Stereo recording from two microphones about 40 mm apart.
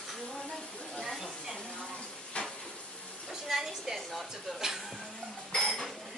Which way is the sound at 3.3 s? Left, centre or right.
Centre.